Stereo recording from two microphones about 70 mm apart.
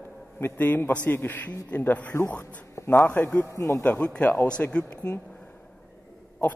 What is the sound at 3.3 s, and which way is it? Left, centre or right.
Speech, left.